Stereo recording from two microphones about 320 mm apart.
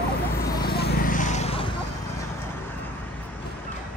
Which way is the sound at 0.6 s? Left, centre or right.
Left.